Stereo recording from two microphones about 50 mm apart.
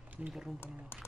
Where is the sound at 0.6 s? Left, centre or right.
Left.